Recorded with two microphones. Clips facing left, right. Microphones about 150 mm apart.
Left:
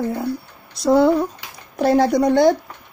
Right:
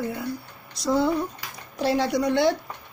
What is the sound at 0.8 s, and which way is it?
Speech, 65° left (ahead or behind).